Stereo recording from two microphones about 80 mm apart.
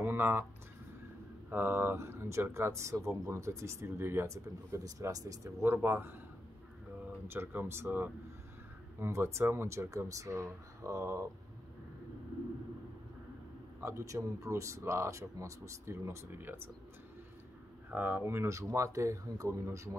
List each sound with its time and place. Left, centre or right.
0.0 s speech: right
1.5 s speech: right
5.6 s speech: right
7.2 s speech: right
13.8 s speech: right
17.9 s speech: right